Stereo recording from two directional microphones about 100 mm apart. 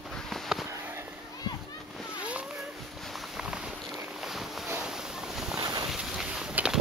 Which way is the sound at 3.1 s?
10° right (ahead or behind).